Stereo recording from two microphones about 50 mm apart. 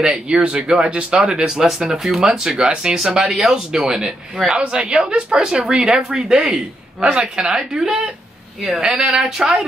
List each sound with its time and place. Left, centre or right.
0.0 s speech: centre
8.9 s a woman's voice: centre
9.2 s speech: centre